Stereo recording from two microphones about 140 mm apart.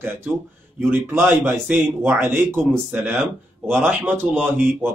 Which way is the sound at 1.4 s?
15° right (ahead or behind).